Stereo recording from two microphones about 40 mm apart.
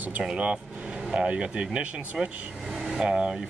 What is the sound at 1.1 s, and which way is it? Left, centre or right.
Speech, right.